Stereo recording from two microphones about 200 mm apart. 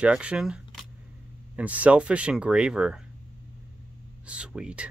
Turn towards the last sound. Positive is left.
turn(degrees=-5)  # may be behind; listen again after turning